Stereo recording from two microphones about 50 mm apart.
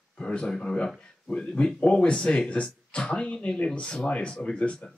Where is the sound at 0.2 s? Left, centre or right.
Centre.